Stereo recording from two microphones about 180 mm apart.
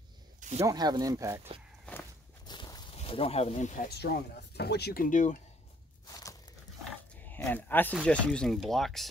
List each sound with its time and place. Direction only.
0.6 s speech: 20° right (ahead or behind)
2.4 s a sound: 25° left (ahead or behind); by 3.9 s 45° left (ahead or behind)
4.0 s speech: 65° left (ahead or behind); by 5.4 s 45° left (ahead or behind)
6.0 s crumpling: 20° left (ahead or behind)
6.8 s a sound: 5° left (ahead or behind)
7.9 s speech: 5° left (ahead or behind)